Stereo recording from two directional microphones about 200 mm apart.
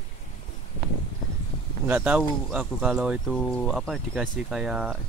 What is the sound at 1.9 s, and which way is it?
Speech, 5° right (ahead or behind).